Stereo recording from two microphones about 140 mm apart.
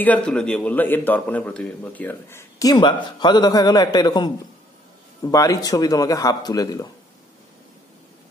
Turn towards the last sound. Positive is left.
turn(degrees=25)  # may be behind; listen again after turning